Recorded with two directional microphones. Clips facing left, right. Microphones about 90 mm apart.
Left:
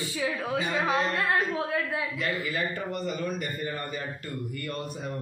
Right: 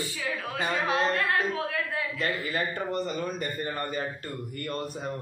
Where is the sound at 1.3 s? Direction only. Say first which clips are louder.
Left 1 dB; 15° left (ahead or behind).